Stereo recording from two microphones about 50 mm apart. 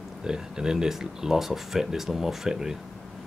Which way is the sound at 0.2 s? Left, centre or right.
Centre.